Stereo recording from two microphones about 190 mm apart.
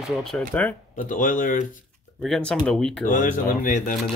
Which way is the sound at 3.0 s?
45° left (ahead or behind).